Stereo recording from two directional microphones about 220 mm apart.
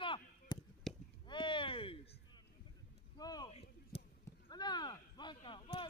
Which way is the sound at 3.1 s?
15° left (ahead or behind).